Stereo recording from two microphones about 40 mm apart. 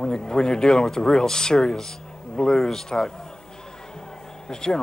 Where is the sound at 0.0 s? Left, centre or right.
Centre.